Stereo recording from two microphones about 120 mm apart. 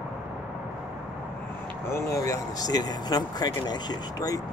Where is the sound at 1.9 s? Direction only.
25° left (ahead or behind).